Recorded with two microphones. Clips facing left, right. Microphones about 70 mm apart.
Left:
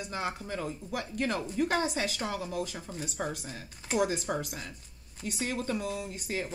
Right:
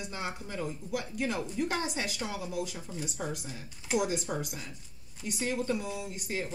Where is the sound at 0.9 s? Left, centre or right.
Left.